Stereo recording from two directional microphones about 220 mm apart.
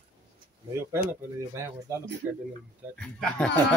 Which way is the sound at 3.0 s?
5° left (ahead or behind).